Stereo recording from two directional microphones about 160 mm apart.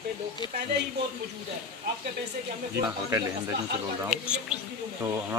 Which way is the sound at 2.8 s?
20° right (ahead or behind).